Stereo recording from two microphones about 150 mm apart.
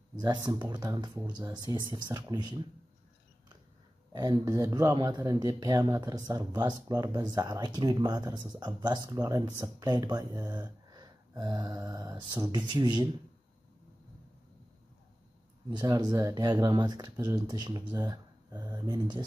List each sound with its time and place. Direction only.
0.1 s speech: 30° right (ahead or behind)
4.1 s speech: 25° right (ahead or behind)
10.6 s a sound: 25° right (ahead or behind)
15.7 s speech: 25° right (ahead or behind)